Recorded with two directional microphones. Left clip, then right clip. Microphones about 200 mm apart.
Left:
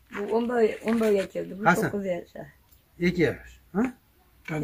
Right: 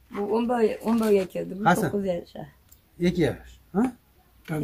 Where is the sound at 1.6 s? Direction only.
10° right (ahead or behind).